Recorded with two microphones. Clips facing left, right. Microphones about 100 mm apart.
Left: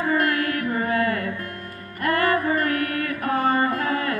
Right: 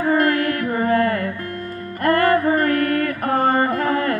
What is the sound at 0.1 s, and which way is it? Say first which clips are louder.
Music: right 5 dB; 45° right (ahead or behind).